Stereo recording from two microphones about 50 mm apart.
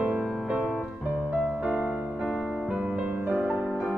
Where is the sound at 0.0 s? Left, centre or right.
Right.